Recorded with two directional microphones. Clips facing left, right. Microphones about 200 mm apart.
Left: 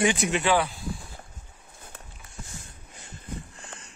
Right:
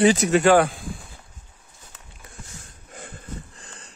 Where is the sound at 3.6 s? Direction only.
35° right (ahead or behind).